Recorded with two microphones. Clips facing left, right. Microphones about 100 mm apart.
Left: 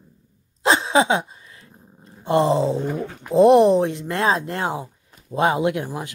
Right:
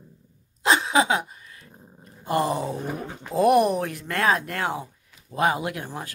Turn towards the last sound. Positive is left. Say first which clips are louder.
# left 8 dB
turn(degrees=20)  # may be behind; listen again after turning